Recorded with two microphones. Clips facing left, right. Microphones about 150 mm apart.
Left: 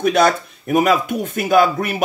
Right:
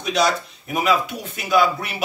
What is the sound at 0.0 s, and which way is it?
Speech, 55° left (ahead or behind).